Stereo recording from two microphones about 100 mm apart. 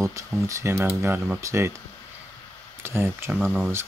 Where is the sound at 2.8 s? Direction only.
25° right (ahead or behind).